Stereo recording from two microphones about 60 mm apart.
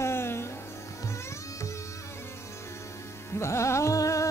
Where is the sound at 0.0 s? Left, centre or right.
Left.